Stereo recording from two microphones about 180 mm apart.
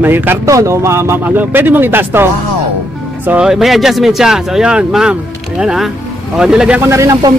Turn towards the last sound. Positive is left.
turn(degrees=-15)  # may be behind; listen again after turning